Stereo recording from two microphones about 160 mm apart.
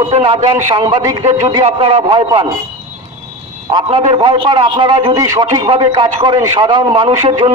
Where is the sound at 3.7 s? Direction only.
30° right (ahead or behind).